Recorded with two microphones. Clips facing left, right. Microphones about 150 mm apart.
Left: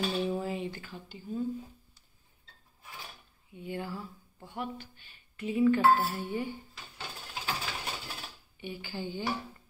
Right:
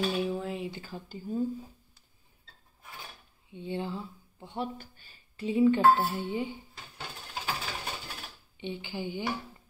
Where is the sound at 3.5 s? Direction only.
25° right (ahead or behind).